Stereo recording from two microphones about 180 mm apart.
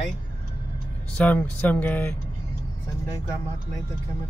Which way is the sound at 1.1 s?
10° left (ahead or behind).